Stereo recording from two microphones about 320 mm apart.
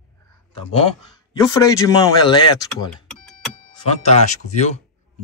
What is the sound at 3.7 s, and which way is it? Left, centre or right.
Speech, left.